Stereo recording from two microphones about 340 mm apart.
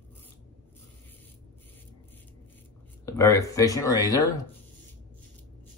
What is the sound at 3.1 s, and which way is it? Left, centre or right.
Speech, centre.